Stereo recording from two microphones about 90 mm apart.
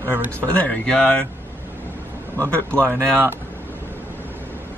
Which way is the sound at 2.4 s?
10° left (ahead or behind).